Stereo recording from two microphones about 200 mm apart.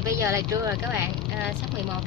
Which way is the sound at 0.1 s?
15° right (ahead or behind).